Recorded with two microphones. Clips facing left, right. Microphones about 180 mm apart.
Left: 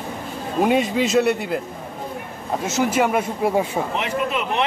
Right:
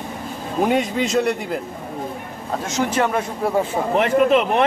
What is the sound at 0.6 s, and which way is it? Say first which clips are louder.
Speech: left 1 dB; centre (ahead or behind).